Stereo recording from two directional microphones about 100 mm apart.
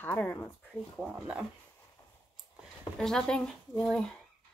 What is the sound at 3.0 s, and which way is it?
Speech, 5° left (ahead or behind).